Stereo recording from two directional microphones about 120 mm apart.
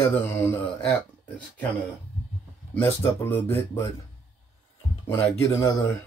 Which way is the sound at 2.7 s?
20° left (ahead or behind).